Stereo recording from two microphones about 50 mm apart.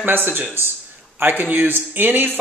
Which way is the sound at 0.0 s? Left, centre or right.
Right.